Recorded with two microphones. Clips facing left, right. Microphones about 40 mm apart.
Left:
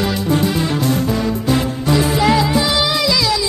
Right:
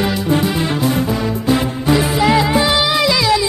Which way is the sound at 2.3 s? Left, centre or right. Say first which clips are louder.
Right 2 dB; right.